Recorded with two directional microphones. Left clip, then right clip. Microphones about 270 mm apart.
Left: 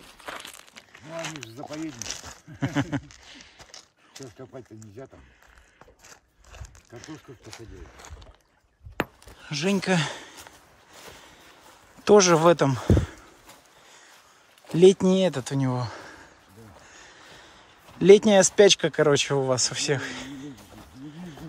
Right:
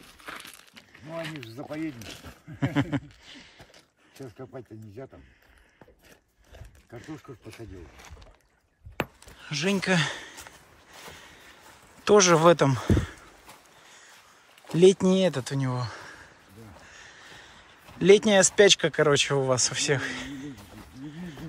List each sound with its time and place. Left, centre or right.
0.0 s crumpling: centre
1.7 s speech: left
2.6 s speech: centre
4.4 s speech: centre
6.9 s speech: centre
7.5 s speech: left
9.0 s a sound: left
9.4 s speech: centre
11.1 s vehicle: centre
12.0 s speech: centre
14.8 s speech: centre
16.8 s a sound: left
17.9 s speech: centre